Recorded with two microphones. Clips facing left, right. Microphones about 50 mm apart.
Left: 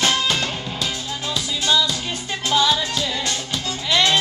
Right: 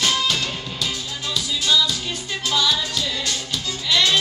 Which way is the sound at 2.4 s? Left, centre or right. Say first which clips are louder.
Left 3 dB; left.